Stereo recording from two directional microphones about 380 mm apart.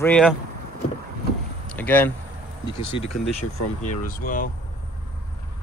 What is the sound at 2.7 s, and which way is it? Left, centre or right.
Speech, left.